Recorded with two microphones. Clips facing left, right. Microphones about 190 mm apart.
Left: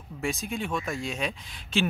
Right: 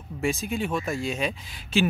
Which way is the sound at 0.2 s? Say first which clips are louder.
Right 4 dB; centre (ahead or behind).